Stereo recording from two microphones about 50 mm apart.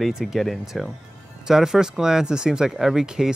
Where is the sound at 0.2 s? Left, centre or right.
Centre.